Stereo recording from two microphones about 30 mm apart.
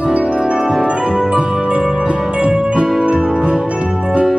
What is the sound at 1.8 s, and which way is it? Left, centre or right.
Music, right.